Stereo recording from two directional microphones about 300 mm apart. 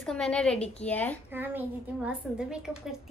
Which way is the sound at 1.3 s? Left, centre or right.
Centre.